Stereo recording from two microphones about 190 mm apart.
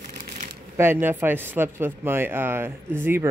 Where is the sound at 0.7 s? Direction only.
10° right (ahead or behind).